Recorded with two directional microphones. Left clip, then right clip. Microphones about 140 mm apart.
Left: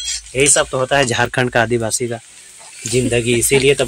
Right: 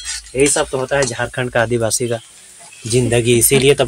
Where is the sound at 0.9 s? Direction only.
85° left.